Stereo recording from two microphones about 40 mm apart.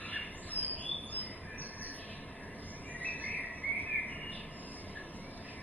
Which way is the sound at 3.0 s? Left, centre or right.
Left.